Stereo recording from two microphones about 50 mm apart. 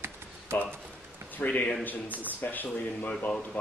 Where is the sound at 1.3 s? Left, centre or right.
Left.